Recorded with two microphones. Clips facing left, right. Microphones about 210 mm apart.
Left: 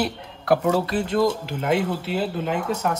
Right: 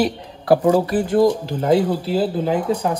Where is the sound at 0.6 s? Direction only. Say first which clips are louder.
Right 5 dB; 10° right (ahead or behind).